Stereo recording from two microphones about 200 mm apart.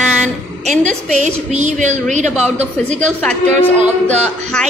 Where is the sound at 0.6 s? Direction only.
35° right (ahead or behind).